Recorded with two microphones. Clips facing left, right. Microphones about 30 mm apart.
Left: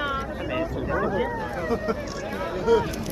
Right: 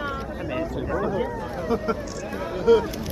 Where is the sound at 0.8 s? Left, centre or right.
Centre.